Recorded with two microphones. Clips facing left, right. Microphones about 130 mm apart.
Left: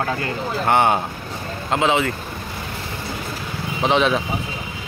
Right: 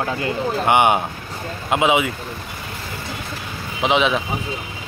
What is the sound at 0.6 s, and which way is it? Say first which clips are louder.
Speech: right 1 dB; 15° right (ahead or behind).